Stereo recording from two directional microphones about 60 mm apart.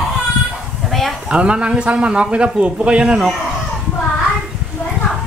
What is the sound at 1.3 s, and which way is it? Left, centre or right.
Speech, centre.